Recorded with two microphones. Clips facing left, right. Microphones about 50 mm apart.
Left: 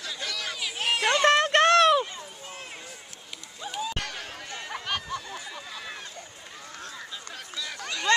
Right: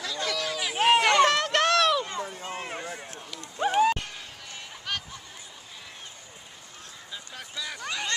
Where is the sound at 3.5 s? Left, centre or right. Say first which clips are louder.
Right 11 dB; right.